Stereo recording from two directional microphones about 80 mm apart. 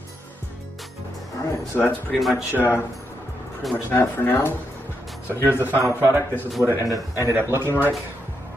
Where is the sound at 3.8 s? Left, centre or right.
Left.